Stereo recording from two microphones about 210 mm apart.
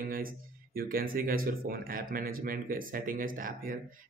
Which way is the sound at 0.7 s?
45° right (ahead or behind).